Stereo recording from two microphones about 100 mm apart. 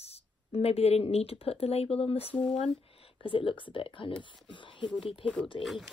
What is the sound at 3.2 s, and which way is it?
Speech, 60° left (ahead or behind).